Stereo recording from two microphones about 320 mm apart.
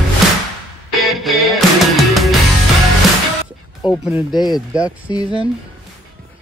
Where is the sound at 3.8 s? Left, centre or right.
Centre.